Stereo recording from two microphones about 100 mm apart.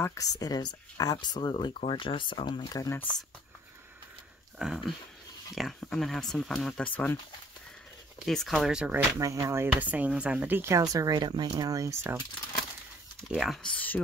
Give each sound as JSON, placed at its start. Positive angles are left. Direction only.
{"t": 0.0, "sound": "speech", "side_deg": 30}
{"t": 4.6, "sound": "speech", "side_deg": -5}
{"t": 8.3, "sound": "speech", "side_deg": 5}
{"t": 8.9, "sound": "a woman's voice", "side_deg": -30}
{"t": 9.8, "sound": "a woman's voice", "side_deg": -15}
{"t": 11.6, "sound": "speech", "side_deg": -35}
{"t": 13.3, "sound": "speech", "side_deg": -10}
{"t": 13.6, "sound": "speech", "side_deg": 15}